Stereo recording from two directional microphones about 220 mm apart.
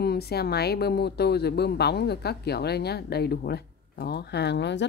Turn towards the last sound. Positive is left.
turn(degrees=50)  # may be behind; listen again after turning